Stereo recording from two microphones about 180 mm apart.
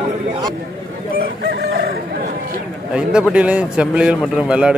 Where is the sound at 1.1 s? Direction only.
65° right (ahead or behind).